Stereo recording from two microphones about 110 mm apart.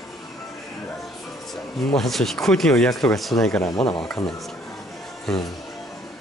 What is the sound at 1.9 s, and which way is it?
Speech, centre (ahead or behind).